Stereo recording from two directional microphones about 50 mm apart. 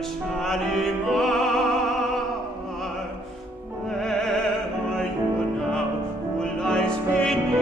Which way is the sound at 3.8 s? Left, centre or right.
Centre.